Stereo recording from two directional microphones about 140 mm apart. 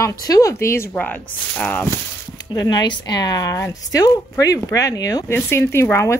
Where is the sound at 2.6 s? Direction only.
30° left (ahead or behind).